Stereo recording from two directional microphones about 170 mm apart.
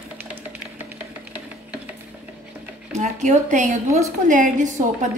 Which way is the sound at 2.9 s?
45° right (ahead or behind).